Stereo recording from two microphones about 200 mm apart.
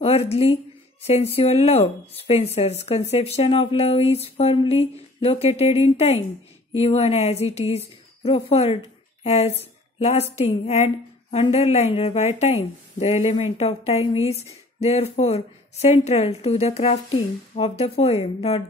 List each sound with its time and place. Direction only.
0.0 s a woman's voice: 30° left (ahead or behind)
9.6 s a sound: 30° left (ahead or behind)
10.3 s speech: 30° left (ahead or behind)